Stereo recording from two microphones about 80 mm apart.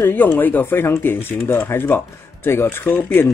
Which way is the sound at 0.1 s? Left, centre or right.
Left.